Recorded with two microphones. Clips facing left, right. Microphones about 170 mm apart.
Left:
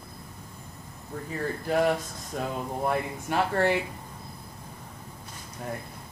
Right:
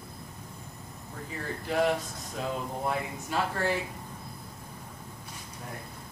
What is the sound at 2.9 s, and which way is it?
Speech, 60° left (ahead or behind).